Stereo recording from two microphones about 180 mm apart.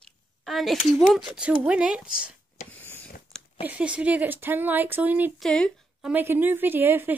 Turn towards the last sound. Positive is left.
turn(degrees=-10)  # may be behind; listen again after turning